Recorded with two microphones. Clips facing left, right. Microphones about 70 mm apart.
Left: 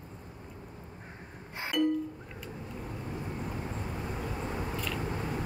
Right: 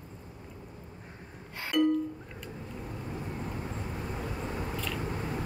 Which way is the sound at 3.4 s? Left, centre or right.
Centre.